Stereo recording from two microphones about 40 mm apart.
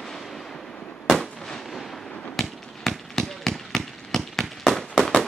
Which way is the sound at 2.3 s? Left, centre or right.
Centre.